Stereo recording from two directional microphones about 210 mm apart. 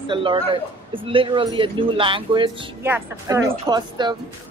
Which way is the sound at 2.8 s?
10° right (ahead or behind).